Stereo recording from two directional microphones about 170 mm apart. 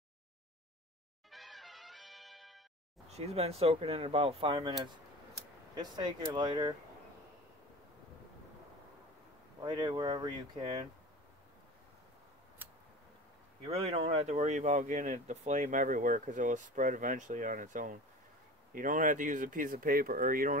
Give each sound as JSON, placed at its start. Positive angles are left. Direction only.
{"t": 1.3, "sound": "music", "side_deg": 0}
{"t": 3.1, "sound": "speech", "side_deg": -40}
{"t": 9.6, "sound": "speech", "side_deg": -25}
{"t": 13.6, "sound": "speech", "side_deg": -35}